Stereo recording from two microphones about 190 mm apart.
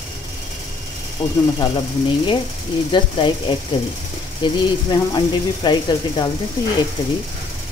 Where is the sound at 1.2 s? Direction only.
30° left (ahead or behind).